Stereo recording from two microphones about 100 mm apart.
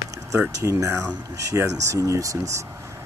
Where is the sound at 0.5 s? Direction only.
30° right (ahead or behind).